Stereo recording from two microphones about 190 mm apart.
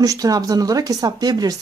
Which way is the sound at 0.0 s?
20° right (ahead or behind).